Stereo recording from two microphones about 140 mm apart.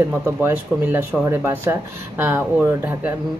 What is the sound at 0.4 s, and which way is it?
Speech, 20° right (ahead or behind).